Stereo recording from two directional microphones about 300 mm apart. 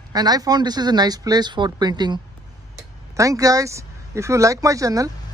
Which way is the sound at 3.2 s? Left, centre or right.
Centre.